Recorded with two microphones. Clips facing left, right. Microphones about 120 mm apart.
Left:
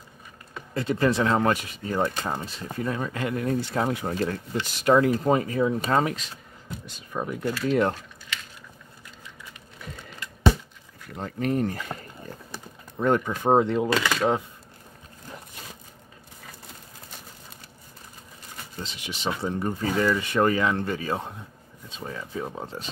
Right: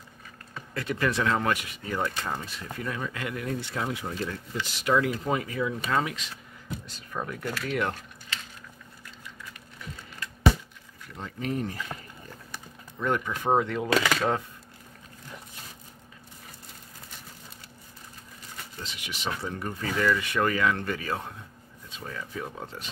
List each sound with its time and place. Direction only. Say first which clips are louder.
0.7 s speech: left 5 dB; 30° left (ahead or behind)
7.0 s speech: left 5 dB; 15° left (ahead or behind)
7.6 s speech: left 7 dB; 30° left (ahead or behind)
11.1 s speech: left 5 dB; 50° left (ahead or behind)
12.4 s a sound: left 3 dB; 35° left (ahead or behind)
13.4 s speech: left 4 dB; 25° left (ahead or behind)
18.8 s speech: left 4 dB; 30° left (ahead or behind)